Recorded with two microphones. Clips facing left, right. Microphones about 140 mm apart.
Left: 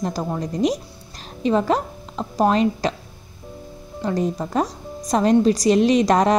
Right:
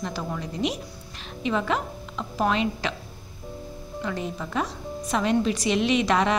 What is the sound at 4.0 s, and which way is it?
A woman's voice, 40° left (ahead or behind).